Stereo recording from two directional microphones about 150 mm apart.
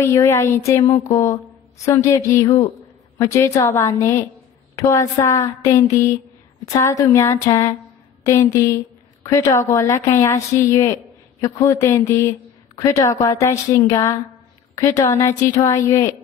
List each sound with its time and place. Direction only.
0.0 s a woman's voice: 20° left (ahead or behind)